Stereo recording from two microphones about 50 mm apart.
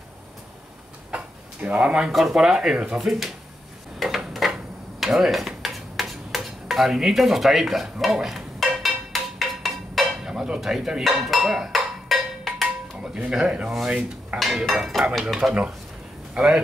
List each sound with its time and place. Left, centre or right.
1.6 s speech: right
2.0 s speech: centre
3.0 s dishes: centre
4.0 s a sound: centre
5.0 s stir: centre
10.1 s dishes: centre
11.2 s music: centre
13.0 s speech: centre
13.8 s dishes: centre
14.7 s dishes: centre
15.2 s speech: centre